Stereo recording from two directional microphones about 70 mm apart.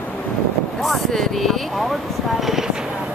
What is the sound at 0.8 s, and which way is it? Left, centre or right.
Speech, centre.